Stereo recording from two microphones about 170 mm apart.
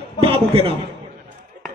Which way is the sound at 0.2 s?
35° right (ahead or behind).